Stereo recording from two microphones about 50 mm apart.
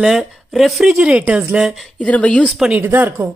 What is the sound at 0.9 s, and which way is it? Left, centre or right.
Speech, right.